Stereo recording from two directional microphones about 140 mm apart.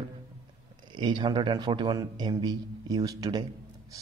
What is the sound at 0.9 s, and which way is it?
A man's voice, 35° right (ahead or behind).